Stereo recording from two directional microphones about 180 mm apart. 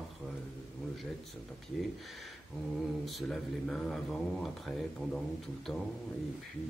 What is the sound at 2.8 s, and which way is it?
Speech, centre (ahead or behind).